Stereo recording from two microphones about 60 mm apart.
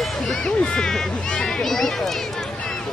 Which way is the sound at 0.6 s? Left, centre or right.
Centre.